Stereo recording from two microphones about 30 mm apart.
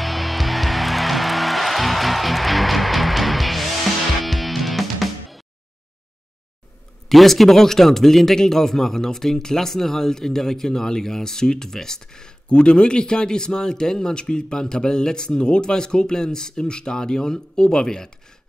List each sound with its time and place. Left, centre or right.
0.0 s music: centre
7.1 s speech: centre
12.4 s speech: left; by 18.1 s centre